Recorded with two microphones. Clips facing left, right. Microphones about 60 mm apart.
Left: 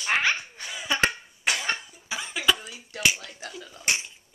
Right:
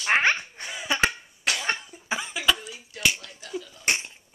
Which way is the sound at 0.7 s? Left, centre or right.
Centre.